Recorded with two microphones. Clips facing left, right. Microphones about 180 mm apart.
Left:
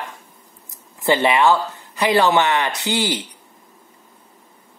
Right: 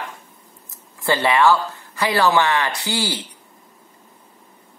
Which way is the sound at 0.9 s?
20° left (ahead or behind).